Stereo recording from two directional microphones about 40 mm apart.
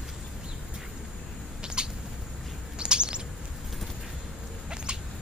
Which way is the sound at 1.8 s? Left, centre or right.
Right.